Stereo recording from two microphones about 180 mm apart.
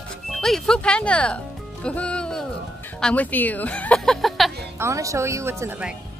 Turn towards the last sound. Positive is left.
turn(degrees=-10)  # may be behind; listen again after turning